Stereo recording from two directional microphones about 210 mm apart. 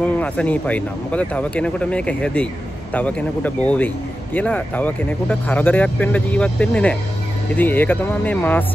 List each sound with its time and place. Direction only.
0.0 s speech: 5° left (ahead or behind)